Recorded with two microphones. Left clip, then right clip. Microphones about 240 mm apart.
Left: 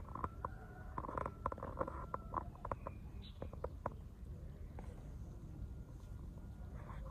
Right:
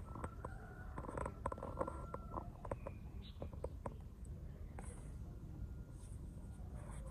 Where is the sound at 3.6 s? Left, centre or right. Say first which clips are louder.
Left 4 dB; right.